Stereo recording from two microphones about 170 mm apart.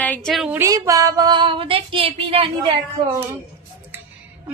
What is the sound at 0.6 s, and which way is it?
Female singing, 20° right (ahead or behind).